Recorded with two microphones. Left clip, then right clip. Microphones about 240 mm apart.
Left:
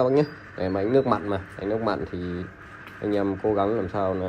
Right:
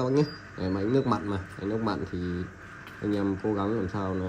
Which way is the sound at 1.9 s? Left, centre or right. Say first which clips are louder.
Left 3 dB; centre.